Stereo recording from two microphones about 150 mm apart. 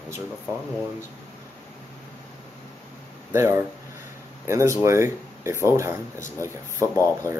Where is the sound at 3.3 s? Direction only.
20° right (ahead or behind).